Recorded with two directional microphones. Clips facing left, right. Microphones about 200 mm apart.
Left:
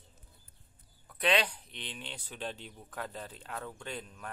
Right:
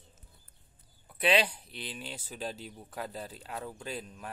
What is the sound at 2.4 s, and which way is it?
Speech, 40° right (ahead or behind).